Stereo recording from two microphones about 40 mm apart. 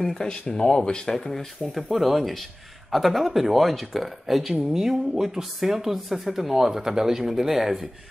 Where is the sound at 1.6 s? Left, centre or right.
Centre.